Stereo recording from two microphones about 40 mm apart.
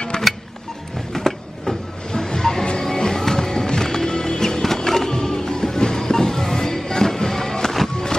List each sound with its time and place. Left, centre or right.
0.1 s music: centre